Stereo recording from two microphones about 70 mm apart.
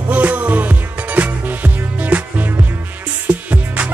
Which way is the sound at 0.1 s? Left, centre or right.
Right.